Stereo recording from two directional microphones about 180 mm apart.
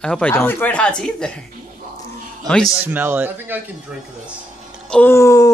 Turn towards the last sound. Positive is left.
turn(degrees=15)  # may be behind; listen again after turning